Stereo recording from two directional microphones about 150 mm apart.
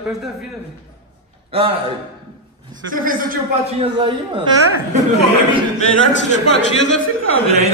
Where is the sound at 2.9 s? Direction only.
65° right (ahead or behind).